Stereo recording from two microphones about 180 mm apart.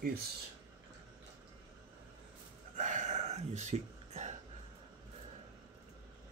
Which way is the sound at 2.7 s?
45° right (ahead or behind).